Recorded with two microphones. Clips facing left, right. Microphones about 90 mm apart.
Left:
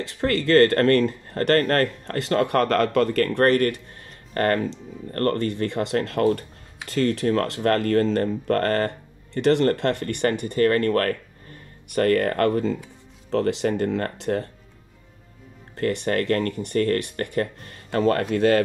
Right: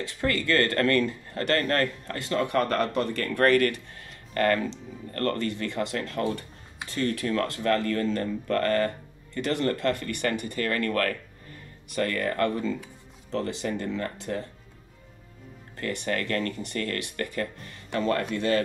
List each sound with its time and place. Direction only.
0.0 s speech: 50° left (ahead or behind); by 3.2 s 75° left (ahead or behind)
3.2 s speech: 40° left (ahead or behind)
7.0 s speech: 40° left (ahead or behind)
9.4 s speech: 60° left (ahead or behind); by 11.1 s 40° left (ahead or behind)
11.9 s speech: 50° left (ahead or behind)
15.7 s speech: 55° left (ahead or behind)